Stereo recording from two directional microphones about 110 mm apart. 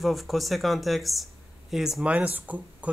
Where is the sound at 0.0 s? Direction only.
Centre (ahead or behind).